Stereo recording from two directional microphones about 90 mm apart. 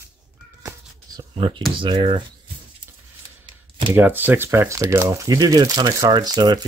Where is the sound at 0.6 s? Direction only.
40° right (ahead or behind).